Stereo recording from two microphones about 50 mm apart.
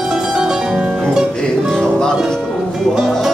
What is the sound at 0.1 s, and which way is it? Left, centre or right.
Music, centre.